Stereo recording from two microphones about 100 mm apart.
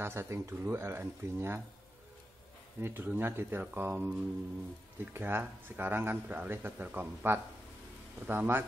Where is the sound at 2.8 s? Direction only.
20° right (ahead or behind).